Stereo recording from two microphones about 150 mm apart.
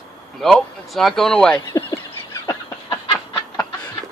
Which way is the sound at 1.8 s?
20° left (ahead or behind).